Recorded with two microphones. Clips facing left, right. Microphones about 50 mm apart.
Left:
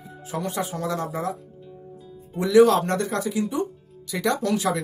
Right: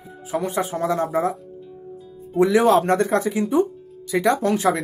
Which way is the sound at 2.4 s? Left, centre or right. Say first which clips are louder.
Right 1 dB; right.